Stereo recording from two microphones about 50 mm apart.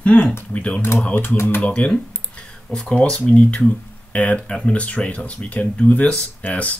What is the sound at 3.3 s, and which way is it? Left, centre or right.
Speech, left.